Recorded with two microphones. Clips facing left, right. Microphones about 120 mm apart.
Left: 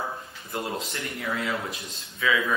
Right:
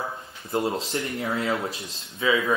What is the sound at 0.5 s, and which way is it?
Speech, 30° right (ahead or behind).